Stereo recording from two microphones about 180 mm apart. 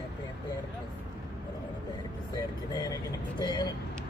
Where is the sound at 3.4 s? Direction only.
25° left (ahead or behind).